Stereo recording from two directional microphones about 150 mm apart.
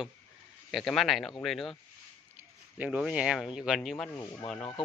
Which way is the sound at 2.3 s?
10° right (ahead or behind).